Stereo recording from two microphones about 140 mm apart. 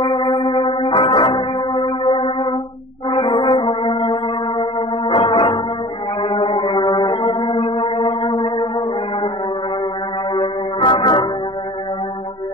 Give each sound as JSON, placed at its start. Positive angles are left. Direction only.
{"t": 0.0, "sound": "music", "side_deg": 35}
{"t": 3.1, "sound": "brass instrument", "side_deg": 35}
{"t": 6.2, "sound": "music", "side_deg": 35}
{"t": 10.3, "sound": "music", "side_deg": 35}